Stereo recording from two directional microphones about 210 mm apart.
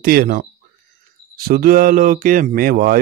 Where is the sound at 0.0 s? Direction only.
45° right (ahead or behind).